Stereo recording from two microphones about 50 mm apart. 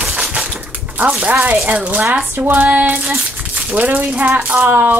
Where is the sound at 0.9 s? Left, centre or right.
Right.